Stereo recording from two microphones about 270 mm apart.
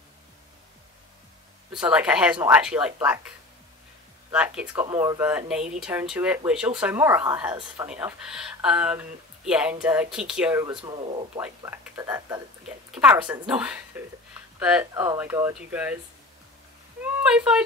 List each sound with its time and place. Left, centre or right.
1.7 s speech: centre
4.3 s speech: centre
11.4 s speech: centre
17.0 s speech: centre